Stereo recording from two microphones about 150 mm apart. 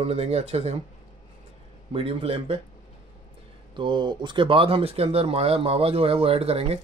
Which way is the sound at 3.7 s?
30° right (ahead or behind).